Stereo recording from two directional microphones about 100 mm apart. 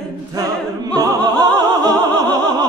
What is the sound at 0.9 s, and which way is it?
Opera, 40° right (ahead or behind).